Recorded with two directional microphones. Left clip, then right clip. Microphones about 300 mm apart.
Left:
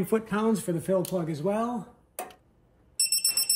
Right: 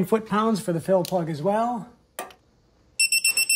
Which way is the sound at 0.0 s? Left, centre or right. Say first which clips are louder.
Right 4 dB; right.